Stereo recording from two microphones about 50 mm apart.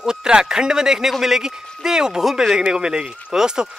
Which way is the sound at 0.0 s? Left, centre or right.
Centre.